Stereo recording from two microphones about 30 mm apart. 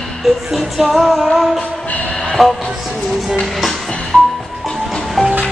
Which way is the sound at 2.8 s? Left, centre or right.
Centre.